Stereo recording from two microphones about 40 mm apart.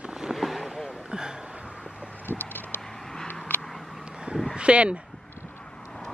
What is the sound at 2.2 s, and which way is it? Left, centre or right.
Vehicle, left.